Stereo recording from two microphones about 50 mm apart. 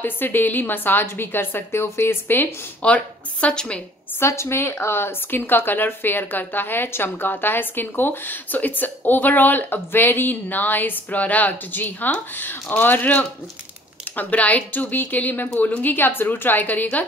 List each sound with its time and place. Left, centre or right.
0.0 s a woman's voice: left
2.8 s speech: left
4.2 s speech: left